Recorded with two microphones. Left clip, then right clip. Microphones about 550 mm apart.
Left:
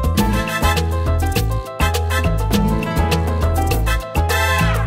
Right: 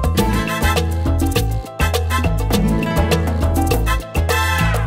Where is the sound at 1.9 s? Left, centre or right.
Right.